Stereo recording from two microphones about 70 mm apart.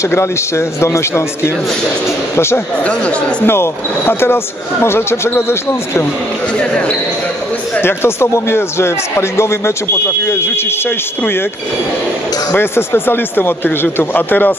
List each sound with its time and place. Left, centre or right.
0.1 s a man's voice: left
2.8 s speech: centre
3.4 s a man's voice: left
7.8 s a man's voice: left
12.5 s a man's voice: left